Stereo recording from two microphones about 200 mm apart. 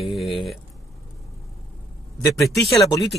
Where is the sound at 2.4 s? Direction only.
Centre (ahead or behind).